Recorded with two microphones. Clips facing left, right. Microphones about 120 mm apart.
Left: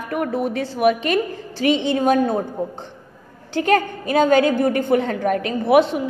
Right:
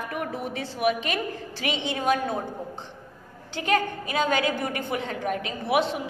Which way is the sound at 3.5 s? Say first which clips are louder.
Left 7 dB; 45° left (ahead or behind).